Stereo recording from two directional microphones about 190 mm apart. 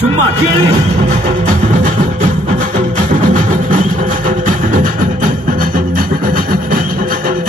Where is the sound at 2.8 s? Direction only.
40° right (ahead or behind).